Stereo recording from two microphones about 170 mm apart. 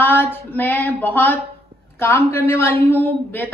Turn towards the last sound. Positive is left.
turn(degrees=10)  # may be behind; listen again after turning